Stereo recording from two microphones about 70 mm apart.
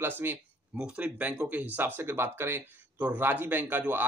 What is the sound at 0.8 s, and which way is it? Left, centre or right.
Speech, centre.